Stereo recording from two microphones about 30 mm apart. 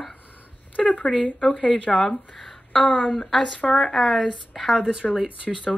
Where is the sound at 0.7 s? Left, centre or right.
Left.